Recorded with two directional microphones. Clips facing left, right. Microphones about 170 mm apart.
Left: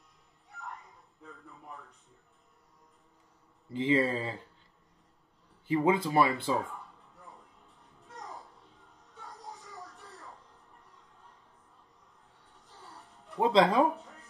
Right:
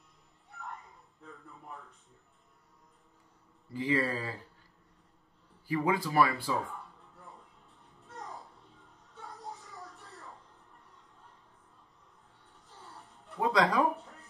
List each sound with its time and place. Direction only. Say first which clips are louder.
3.7 s speech: left 3 dB; 25° left (ahead or behind)
5.7 s speech: left 4 dB; 25° left (ahead or behind)
13.4 s speech: left 4 dB; 25° left (ahead or behind)